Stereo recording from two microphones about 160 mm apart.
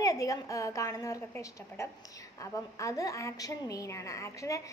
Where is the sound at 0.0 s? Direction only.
20° left (ahead or behind).